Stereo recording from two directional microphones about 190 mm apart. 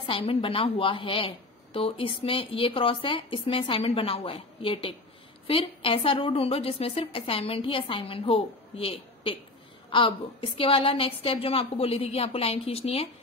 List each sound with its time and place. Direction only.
0.0 s a woman's voice: 30° left (ahead or behind)